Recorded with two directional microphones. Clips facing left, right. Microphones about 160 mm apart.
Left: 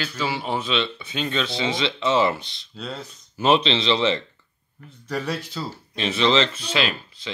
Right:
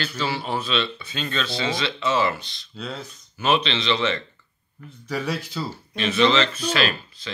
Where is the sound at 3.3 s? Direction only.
30° left (ahead or behind).